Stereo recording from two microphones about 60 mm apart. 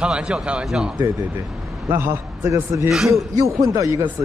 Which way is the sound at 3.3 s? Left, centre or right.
Right.